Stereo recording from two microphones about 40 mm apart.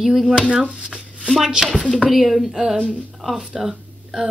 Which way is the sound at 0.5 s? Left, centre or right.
Centre.